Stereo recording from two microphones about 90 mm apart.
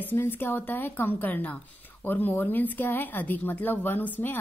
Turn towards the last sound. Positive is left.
turn(degrees=20)  # may be behind; listen again after turning